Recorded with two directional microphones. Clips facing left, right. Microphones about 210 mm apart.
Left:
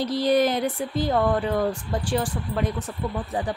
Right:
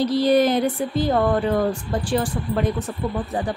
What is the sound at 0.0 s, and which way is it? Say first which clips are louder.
Speech: right 4 dB; 15° left (ahead or behind).